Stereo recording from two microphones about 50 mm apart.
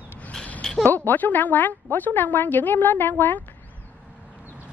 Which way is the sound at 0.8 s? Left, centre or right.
Left.